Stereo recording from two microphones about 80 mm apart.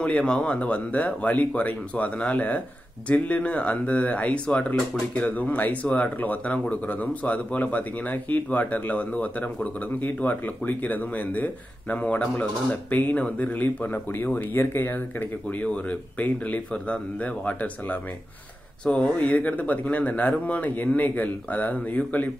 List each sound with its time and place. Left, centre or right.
0.0 s speech: centre